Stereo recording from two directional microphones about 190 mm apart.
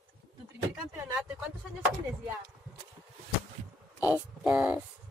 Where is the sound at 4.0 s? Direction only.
10° right (ahead or behind).